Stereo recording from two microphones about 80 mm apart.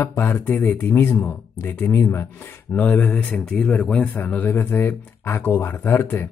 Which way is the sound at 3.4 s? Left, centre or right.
Centre.